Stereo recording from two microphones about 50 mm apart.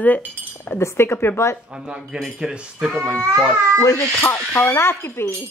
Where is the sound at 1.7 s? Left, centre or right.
Centre.